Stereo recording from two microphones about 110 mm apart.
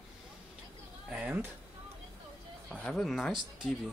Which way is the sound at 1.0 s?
10° right (ahead or behind).